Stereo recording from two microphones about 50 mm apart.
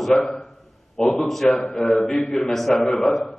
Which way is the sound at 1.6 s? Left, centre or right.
Centre.